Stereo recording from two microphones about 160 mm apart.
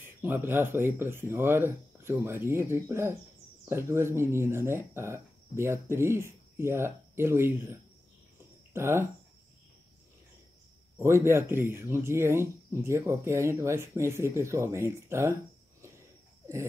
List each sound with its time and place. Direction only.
0.0 s speech: 15° right (ahead or behind)
11.0 s speech: 15° right (ahead or behind)